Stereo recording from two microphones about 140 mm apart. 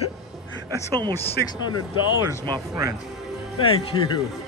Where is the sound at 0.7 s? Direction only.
30° right (ahead or behind).